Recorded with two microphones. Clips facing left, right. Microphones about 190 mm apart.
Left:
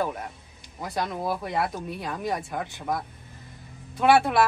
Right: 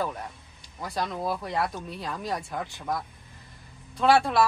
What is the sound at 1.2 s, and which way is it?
Speech, 5° left (ahead or behind).